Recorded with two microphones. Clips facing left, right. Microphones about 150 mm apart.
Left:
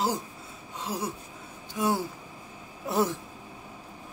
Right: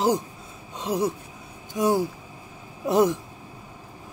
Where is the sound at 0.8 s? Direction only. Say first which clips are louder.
Right 8 dB; 20° right (ahead or behind).